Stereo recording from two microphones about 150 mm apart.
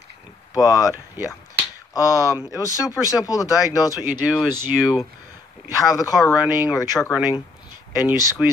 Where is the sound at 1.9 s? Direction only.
20° left (ahead or behind).